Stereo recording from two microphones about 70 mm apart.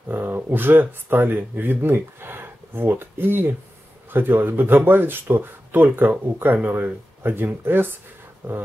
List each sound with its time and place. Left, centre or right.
0.1 s speech: right